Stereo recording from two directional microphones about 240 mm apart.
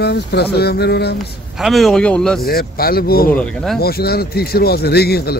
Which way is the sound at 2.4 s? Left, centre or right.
Left.